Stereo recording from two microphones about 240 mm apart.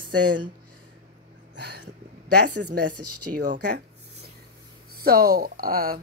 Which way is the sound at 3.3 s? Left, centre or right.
Right.